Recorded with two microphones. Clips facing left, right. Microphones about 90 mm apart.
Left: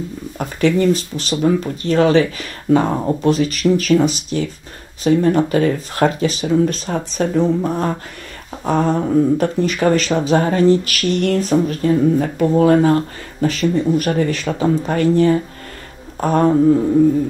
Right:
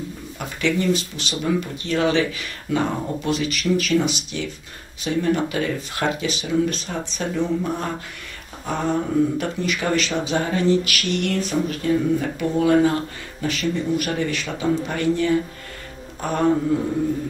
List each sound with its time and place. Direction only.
0.4 s speech: 40° left (ahead or behind)